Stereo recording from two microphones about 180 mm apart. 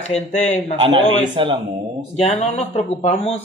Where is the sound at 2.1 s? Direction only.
35° left (ahead or behind).